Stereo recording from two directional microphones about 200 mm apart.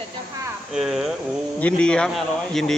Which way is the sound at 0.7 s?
Centre (ahead or behind).